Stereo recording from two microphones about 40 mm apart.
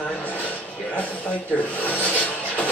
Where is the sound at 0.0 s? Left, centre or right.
Left.